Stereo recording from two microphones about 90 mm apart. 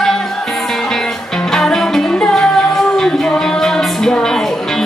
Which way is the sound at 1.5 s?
5° left (ahead or behind).